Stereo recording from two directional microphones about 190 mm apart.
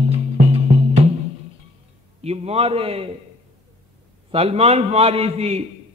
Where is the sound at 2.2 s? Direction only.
35° right (ahead or behind).